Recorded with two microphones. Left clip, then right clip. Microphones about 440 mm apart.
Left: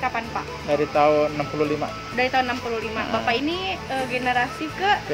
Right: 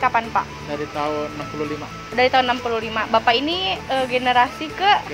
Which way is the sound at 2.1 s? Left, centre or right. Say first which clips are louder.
Right 6 dB; centre.